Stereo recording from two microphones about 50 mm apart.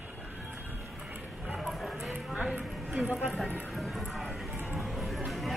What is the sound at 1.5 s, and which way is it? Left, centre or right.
Music, centre.